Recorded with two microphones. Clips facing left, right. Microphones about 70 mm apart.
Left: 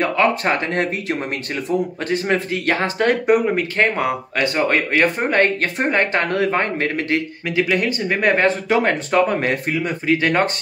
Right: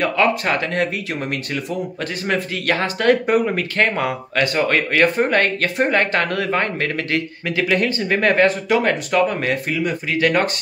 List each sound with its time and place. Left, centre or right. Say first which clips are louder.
0.0 s speech: even; left
7.4 s speech: even; centre
8.5 s speech: even; left